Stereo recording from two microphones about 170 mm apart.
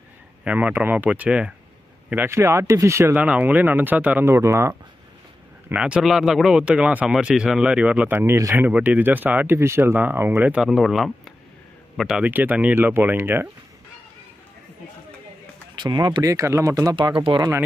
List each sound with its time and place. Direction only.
0.4 s speech: 10° right (ahead or behind)
15.7 s speech: 25° right (ahead or behind)
16.9 s speech: 30° right (ahead or behind)